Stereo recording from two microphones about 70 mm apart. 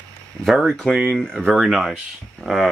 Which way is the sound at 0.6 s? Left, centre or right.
Centre.